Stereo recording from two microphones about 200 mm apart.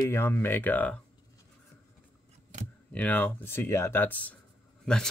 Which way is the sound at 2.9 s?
10° left (ahead or behind).